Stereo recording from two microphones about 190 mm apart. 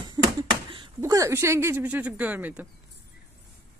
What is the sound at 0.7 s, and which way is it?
Speech, 20° right (ahead or behind).